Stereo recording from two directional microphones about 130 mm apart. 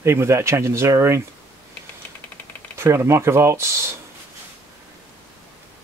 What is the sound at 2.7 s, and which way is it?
Speech, 20° right (ahead or behind).